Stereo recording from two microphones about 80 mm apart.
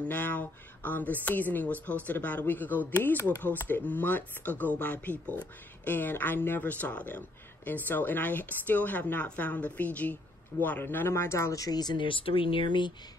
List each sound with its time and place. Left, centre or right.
0.1 s speech: left